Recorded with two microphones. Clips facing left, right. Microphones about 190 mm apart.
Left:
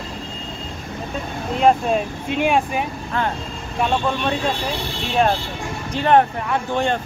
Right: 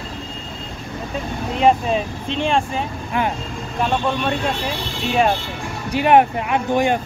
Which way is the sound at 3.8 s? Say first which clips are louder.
Even; centre (ahead or behind).